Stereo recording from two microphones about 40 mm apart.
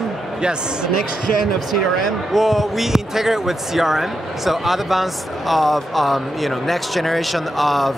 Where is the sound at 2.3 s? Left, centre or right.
Centre.